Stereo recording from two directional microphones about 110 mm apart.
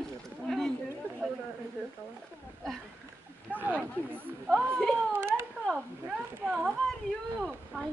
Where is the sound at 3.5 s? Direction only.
15° right (ahead or behind).